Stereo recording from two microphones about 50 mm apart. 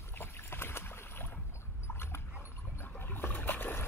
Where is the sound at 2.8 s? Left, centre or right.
Left.